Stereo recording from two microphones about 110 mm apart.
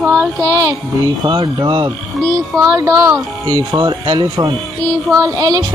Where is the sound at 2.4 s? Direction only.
30° right (ahead or behind).